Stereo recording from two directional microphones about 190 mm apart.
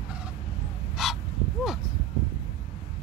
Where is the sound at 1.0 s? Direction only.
Centre (ahead or behind).